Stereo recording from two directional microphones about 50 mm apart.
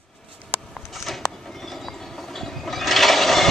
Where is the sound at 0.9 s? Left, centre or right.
Centre.